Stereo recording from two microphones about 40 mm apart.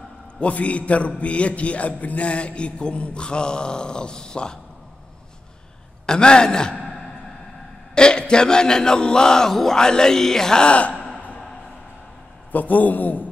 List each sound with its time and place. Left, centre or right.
0.4 s a man's voice: left
6.0 s a man's voice: left
7.9 s speech: left
10.7 s a man's voice: left
11.1 s a sound: left
12.5 s a man's voice: left